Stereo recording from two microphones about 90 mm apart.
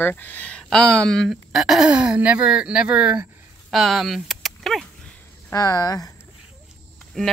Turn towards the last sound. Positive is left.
turn(degrees=10)  # may be behind; listen again after turning